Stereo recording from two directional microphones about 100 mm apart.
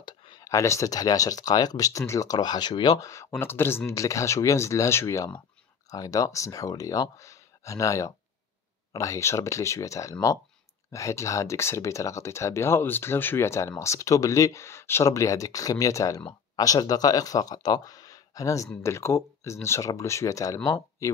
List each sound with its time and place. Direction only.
0.0 s a sound: 50° left (ahead or behind)
0.4 s speech: 30° left (ahead or behind)
16.2 s speech: 55° left (ahead or behind)
16.6 s speech: 40° left (ahead or behind)